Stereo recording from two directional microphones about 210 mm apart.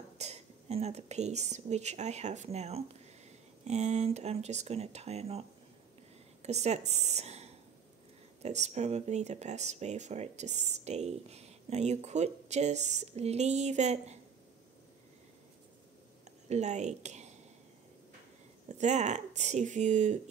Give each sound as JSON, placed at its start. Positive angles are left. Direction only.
{"t": 0.2, "sound": "a woman's voice", "side_deg": -30}
{"t": 16.4, "sound": "a woman's voice", "side_deg": -30}
{"t": 18.7, "sound": "speech", "side_deg": -35}